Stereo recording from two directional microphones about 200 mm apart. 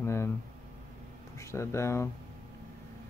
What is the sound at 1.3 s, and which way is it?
Speech, 15° left (ahead or behind).